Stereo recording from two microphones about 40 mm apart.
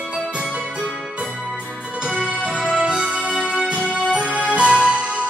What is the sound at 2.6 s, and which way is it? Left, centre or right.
Music, right.